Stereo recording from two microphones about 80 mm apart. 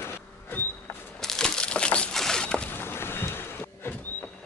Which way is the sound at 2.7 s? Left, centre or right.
Left.